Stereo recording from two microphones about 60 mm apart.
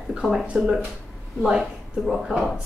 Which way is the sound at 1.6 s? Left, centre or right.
Centre.